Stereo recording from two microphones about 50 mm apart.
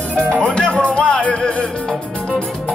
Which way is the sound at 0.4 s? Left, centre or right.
Centre.